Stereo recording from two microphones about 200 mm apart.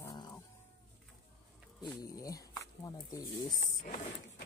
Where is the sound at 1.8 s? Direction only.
15° left (ahead or behind).